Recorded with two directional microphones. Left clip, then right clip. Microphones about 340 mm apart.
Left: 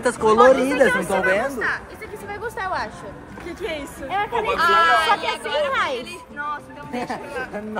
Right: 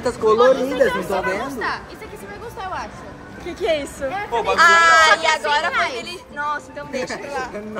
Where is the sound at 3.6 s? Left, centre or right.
Right.